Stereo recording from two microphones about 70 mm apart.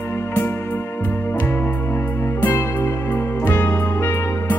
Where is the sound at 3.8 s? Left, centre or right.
Left.